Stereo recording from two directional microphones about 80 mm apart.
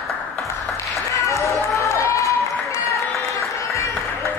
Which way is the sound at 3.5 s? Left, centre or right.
Left.